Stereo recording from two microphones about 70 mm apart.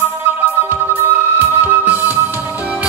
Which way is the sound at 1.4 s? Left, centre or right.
Right.